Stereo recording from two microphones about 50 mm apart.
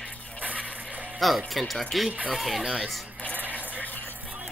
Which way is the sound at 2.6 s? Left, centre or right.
Centre.